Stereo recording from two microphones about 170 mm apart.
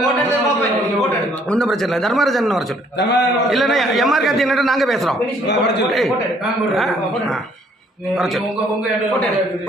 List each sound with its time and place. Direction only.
1.5 s a man's voice: 5° left (ahead or behind)
3.0 s a man's voice: 90° left
3.5 s a man's voice: centre (ahead or behind)
5.5 s a man's voice: 90° left
5.9 s a man's voice: centre (ahead or behind)